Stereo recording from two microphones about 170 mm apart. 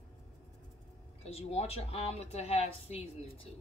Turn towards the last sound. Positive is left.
turn(degrees=35)  # may be behind; listen again after turning